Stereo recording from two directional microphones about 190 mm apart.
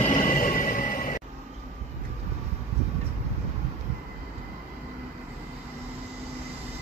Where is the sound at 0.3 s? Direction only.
45° left (ahead or behind).